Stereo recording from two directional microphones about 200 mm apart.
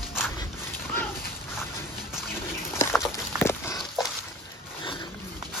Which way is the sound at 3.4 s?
15° left (ahead or behind).